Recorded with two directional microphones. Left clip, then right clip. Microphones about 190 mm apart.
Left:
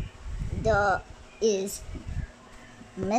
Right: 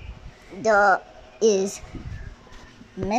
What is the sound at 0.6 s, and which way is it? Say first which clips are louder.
Speech: right 6 dB; 20° right (ahead or behind).